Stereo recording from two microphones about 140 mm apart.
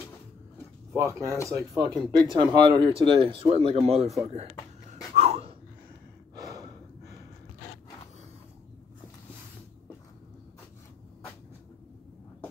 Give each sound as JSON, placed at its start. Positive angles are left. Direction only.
{"t": 0.9, "sound": "speech", "side_deg": -20}
{"t": 2.0, "sound": "speech", "side_deg": -30}
{"t": 5.1, "sound": "dog", "side_deg": -45}
{"t": 6.3, "sound": "gasp", "side_deg": -25}